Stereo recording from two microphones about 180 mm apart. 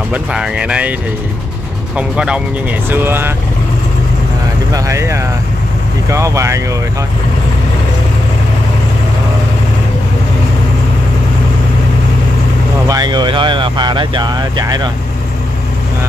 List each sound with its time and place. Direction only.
0.1 s speech: 5° right (ahead or behind)
2.0 s speech: 5° right (ahead or behind)
4.7 s speech: 15° right (ahead or behind)
12.8 s speech: 20° right (ahead or behind)